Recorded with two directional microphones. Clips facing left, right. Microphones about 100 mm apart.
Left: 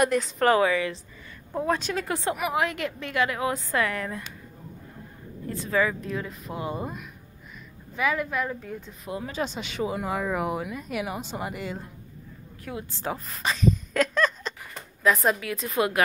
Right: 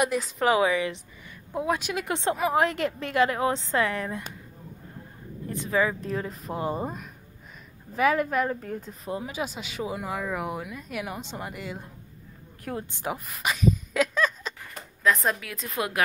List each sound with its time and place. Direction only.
0.0 s a woman's voice: 5° right (ahead or behind); by 4.2 s 20° right (ahead or behind)
5.5 s a woman's voice: 20° right (ahead or behind)
5.9 s a woman's voice: 35° right (ahead or behind)
9.2 s speech: 10° right (ahead or behind)
12.9 s speech: 15° right (ahead or behind); by 16.0 s centre (ahead or behind)